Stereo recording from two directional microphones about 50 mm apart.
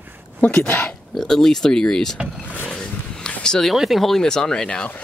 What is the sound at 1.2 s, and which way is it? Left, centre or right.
Speech, centre.